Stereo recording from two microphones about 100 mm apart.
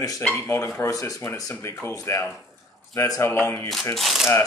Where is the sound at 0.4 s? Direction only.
30° left (ahead or behind).